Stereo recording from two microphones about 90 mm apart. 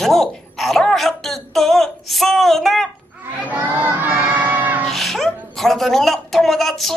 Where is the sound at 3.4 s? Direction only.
20° right (ahead or behind).